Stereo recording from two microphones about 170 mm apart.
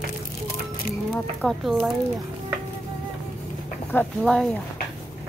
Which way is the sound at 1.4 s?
Centre (ahead or behind).